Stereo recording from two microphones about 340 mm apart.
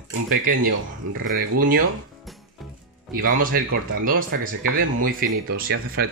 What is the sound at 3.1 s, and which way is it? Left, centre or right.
Speech, right.